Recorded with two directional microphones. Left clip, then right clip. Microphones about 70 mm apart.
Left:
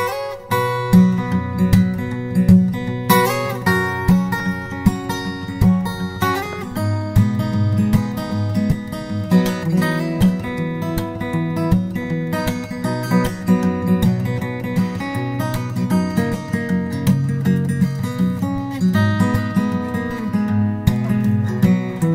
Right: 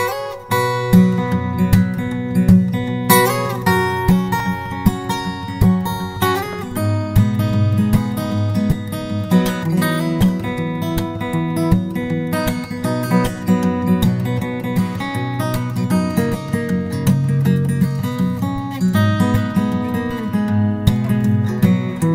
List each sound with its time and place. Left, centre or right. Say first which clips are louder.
0.0 s music: right 1 dB; right
9.3 s music: even; right
15.8 s music: right 1 dB; right